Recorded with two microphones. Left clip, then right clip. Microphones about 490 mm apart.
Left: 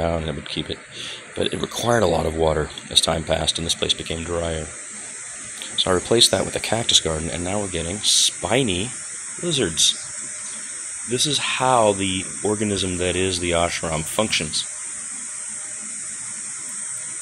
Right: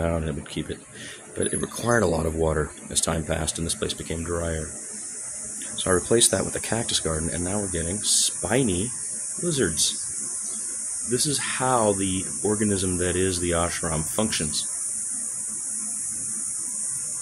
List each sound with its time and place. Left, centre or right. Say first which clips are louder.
0.0 s speech: left 4 dB; right
1.9 s speech: left 3 dB; right
5.9 s speech: left 3 dB; right
11.1 s speech: left 5 dB; right